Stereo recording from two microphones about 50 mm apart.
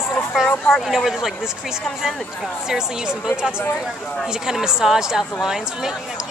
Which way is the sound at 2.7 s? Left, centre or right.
Centre.